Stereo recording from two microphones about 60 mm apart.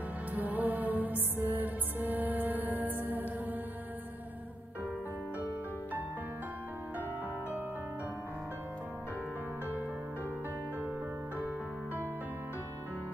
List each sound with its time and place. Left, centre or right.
0.3 s music: right